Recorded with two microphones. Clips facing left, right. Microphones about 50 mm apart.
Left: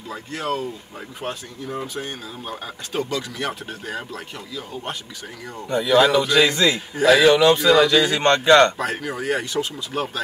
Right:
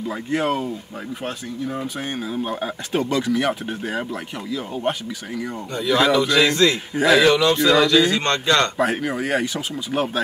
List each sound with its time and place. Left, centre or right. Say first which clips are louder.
0.1 s speech: right 3 dB; right
2.0 s speech: right 5 dB; right
5.7 s a man's voice: left 2 dB; centre
8.2 s a man's voice: left 5 dB; left
8.7 s speech: right 4 dB; centre